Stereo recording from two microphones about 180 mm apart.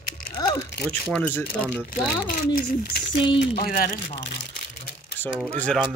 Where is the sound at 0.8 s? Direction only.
5° left (ahead or behind).